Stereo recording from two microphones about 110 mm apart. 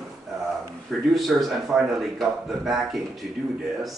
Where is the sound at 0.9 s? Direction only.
Centre (ahead or behind).